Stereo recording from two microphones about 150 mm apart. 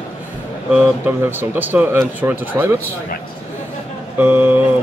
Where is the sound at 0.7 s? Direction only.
10° right (ahead or behind).